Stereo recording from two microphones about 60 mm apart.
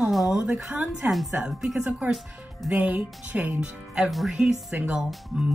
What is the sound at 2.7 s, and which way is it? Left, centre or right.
Speech, right.